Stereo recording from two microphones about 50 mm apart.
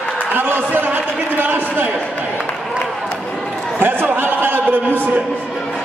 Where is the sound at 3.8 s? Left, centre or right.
Right.